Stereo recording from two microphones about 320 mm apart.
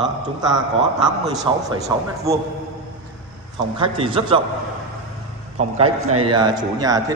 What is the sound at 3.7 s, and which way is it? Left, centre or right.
Speech, centre.